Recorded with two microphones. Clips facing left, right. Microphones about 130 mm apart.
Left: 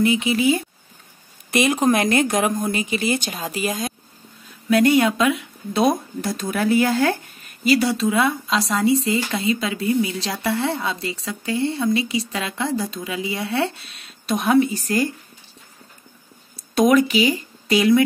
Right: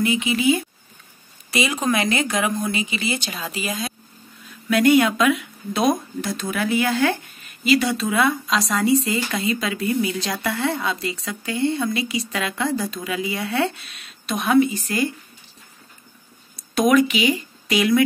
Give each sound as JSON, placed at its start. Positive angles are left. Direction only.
{"t": 0.0, "sound": "speech", "side_deg": 35}
{"t": 1.5, "sound": "a woman's voice", "side_deg": 50}
{"t": 4.6, "sound": "speech", "side_deg": 30}
{"t": 16.5, "sound": "speech", "side_deg": 30}